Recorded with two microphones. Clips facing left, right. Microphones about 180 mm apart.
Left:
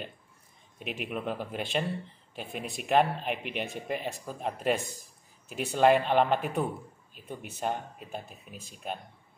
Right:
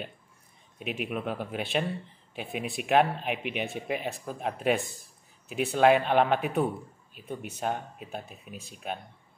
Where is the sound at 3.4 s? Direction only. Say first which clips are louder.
Right 2 dB; 55° right (ahead or behind).